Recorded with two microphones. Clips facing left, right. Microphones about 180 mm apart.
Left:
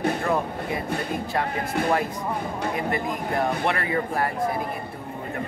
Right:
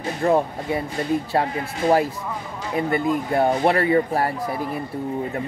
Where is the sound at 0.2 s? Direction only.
30° right (ahead or behind).